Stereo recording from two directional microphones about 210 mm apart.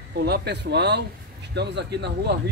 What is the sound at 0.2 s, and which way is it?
Speech, 50° right (ahead or behind).